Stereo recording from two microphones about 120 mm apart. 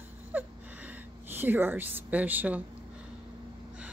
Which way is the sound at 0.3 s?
15° right (ahead or behind).